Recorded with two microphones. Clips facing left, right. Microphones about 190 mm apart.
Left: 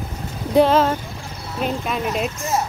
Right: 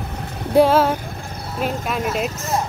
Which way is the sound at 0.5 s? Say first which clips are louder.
Right 1 dB; 10° right (ahead or behind).